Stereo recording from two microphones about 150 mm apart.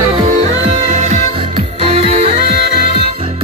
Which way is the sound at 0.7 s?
50° right (ahead or behind).